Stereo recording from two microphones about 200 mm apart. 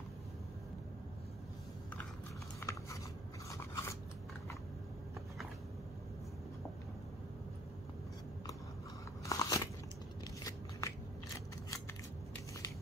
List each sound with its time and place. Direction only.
2.6 s biting: 10° left (ahead or behind)
3.4 s scissors: 15° left (ahead or behind)
9.2 s biting: 20° left (ahead or behind)
10.8 s a sound: 15° left (ahead or behind)